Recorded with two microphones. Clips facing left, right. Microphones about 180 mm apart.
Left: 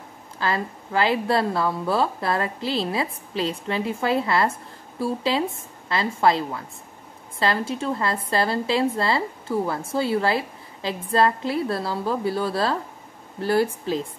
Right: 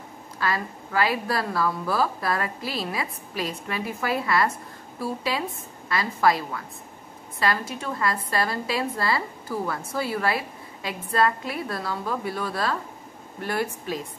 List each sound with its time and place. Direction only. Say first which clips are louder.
0.4 s a woman's voice: left 2 dB; 25° left (ahead or behind)